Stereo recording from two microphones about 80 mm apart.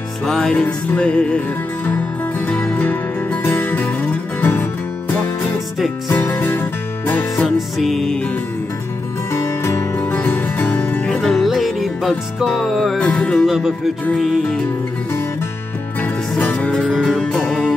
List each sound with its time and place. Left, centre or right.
0.2 s music: centre
2.4 s music: left
6.1 s music: left
7.4 s music: centre
9.3 s music: left
10.1 s music: left
11.1 s music: centre
13.5 s music: centre
16.0 s music: centre